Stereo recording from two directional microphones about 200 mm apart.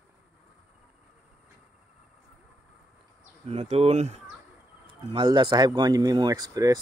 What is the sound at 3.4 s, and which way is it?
Speech, 30° right (ahead or behind).